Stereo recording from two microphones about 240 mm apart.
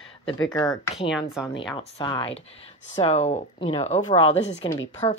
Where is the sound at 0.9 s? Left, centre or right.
Centre.